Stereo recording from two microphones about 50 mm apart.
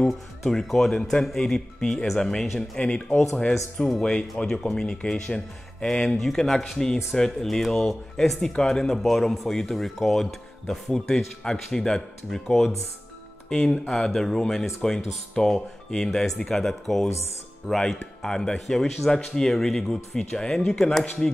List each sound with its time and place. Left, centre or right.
0.5 s speech: centre
2.8 s speech: left
4.5 s speech: centre
6.0 s speech: centre